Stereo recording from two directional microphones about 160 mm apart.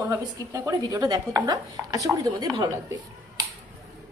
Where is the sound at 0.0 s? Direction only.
20° right (ahead or behind).